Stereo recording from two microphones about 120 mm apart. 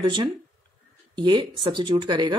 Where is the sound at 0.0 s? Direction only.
40° right (ahead or behind).